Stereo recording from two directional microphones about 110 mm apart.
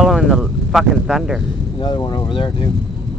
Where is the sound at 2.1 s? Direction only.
45° left (ahead or behind).